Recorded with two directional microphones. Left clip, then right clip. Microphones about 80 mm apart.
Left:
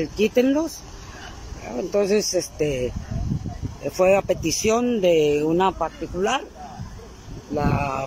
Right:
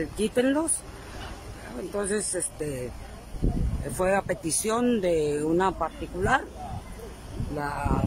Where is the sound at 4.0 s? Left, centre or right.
Centre.